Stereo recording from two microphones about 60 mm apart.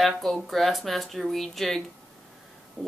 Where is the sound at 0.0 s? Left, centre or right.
Centre.